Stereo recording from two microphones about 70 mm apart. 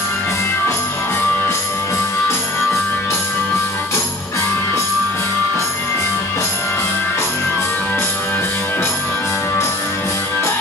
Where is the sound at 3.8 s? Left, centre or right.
Left.